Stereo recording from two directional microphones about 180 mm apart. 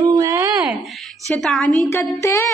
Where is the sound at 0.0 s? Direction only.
20° right (ahead or behind).